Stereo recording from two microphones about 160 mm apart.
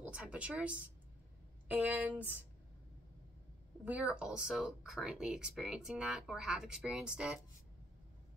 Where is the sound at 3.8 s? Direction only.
10° right (ahead or behind).